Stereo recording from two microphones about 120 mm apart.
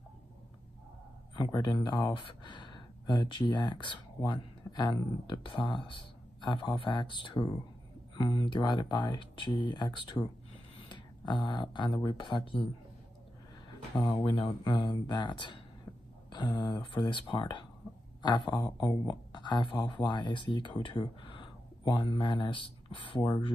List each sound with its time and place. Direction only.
1.3 s speech: 35° left (ahead or behind)
13.7 s speech: 35° left (ahead or behind)